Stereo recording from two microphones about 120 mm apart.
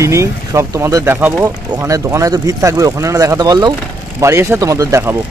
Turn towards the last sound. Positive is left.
turn(degrees=-25)  # may be behind; listen again after turning